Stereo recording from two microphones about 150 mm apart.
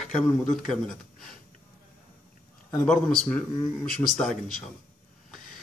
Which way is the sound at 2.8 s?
5° left (ahead or behind).